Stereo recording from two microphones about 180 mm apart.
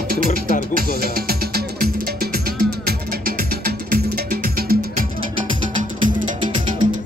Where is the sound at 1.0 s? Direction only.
55° right (ahead or behind).